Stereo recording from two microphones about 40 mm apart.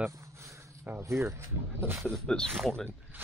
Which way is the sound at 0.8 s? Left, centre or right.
Right.